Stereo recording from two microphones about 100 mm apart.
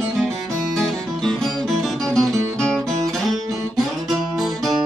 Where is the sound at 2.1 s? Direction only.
5° left (ahead or behind).